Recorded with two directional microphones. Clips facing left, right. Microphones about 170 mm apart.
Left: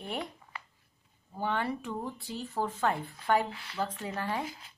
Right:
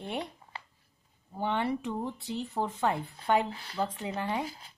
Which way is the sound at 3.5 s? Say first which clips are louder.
Right 2 dB; 35° right (ahead or behind).